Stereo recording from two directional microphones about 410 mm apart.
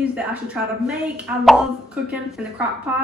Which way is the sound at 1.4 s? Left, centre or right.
Centre.